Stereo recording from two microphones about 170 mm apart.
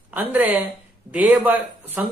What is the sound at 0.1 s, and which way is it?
Speech, 10° right (ahead or behind).